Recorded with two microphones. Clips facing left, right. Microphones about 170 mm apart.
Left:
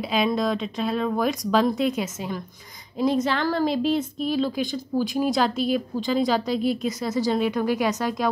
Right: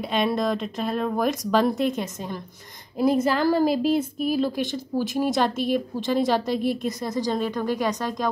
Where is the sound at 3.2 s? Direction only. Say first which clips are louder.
Right 3 dB; 5° right (ahead or behind).